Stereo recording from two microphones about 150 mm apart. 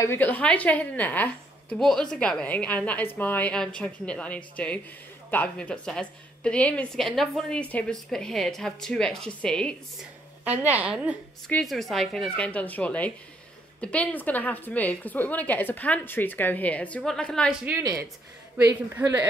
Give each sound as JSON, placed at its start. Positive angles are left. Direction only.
{"t": 0.0, "sound": "a woman's voice", "side_deg": 15}
{"t": 10.4, "sound": "a woman's voice", "side_deg": -10}
{"t": 11.4, "sound": "a woman's voice", "side_deg": 5}
{"t": 18.7, "sound": "a woman's voice", "side_deg": -15}